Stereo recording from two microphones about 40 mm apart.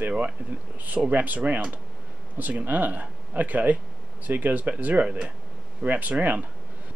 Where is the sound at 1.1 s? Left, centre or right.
Right.